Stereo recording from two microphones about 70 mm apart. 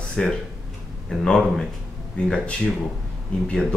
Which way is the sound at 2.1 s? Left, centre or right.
Centre.